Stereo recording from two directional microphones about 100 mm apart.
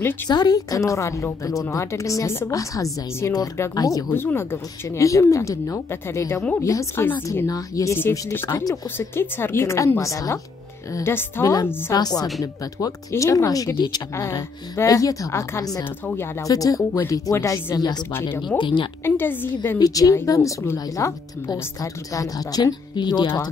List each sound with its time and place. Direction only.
0.3 s a woman's voice: 40° left (ahead or behind)
4.1 s a woman's voice: 20° left (ahead or behind)
11.1 s speech: 25° left (ahead or behind)
11.9 s a woman's voice: 40° left (ahead or behind)
14.9 s a woman's voice: 35° left (ahead or behind)
16.4 s a woman's voice: 35° left (ahead or behind)
17.7 s speech: 45° left (ahead or behind)
18.6 s speech: 55° left (ahead or behind)
19.0 s speech: 20° left (ahead or behind)
19.8 s a woman's voice: 35° left (ahead or behind)